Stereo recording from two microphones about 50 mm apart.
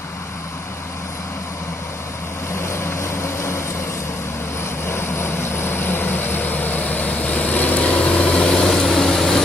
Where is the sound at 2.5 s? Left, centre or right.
Left.